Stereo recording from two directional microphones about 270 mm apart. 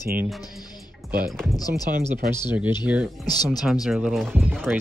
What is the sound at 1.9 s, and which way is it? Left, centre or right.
Speech, right.